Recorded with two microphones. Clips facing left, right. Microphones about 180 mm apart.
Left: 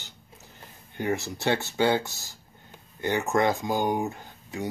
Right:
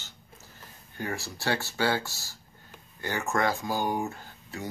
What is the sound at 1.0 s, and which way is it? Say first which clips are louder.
Speech: left 6 dB; 20° left (ahead or behind).